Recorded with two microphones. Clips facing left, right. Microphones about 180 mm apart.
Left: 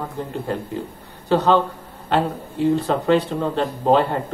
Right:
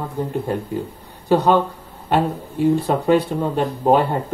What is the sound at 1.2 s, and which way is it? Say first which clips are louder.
Speech: right 1 dB; 10° right (ahead or behind).